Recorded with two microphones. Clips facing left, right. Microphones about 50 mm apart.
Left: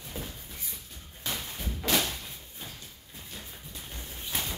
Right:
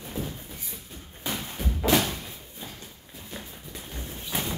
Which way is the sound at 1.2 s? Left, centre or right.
Centre.